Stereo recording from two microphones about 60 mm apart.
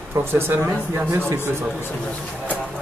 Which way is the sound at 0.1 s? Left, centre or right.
Right.